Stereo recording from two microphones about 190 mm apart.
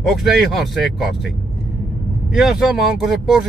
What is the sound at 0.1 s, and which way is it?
Speech, centre (ahead or behind).